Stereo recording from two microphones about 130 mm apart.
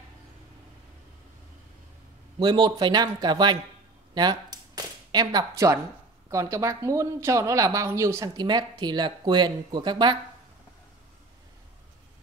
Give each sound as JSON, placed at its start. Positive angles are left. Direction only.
{"t": 2.3, "sound": "speech", "side_deg": -35}
{"t": 4.1, "sound": "a sound", "side_deg": -30}
{"t": 6.3, "sound": "speech", "side_deg": -25}